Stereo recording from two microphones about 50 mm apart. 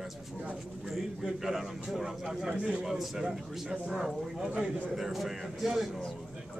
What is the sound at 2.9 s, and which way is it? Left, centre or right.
Speech, centre.